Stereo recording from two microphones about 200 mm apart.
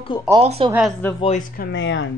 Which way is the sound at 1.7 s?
65° left (ahead or behind).